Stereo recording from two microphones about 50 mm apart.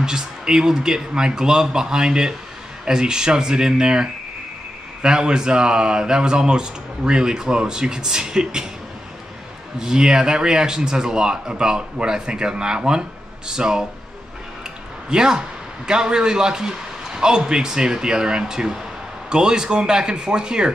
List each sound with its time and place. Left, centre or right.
0.0 s speech: centre
9.8 s speech: centre
15.0 s a man's voice: centre